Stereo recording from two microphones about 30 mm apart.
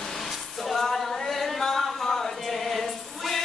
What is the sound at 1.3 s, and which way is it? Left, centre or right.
Chant, centre.